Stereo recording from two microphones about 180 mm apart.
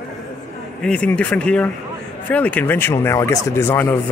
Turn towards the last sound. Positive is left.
turn(degrees=10)  # may be behind; listen again after turning